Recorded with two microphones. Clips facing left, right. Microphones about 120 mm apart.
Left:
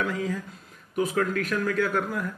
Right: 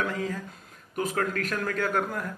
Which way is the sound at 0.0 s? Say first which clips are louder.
Left 2 dB; 40° right (ahead or behind).